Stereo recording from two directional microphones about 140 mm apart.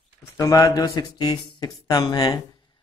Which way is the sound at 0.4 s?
25° left (ahead or behind).